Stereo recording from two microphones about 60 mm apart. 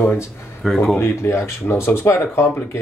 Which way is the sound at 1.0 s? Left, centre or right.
Left.